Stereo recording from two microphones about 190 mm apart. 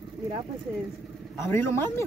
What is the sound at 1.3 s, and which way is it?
Speech, 15° left (ahead or behind).